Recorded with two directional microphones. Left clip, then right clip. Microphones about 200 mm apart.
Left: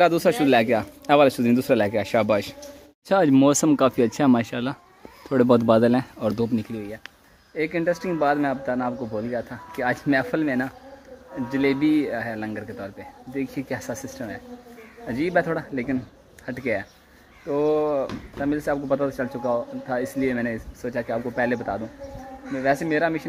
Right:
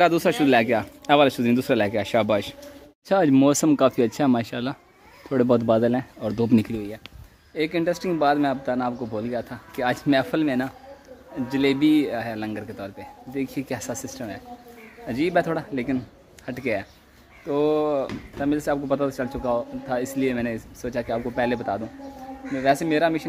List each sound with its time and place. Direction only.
0.0 s speech: centre (ahead or behind)
6.5 s speech: 50° right (ahead or behind)
7.5 s speech: 10° right (ahead or behind)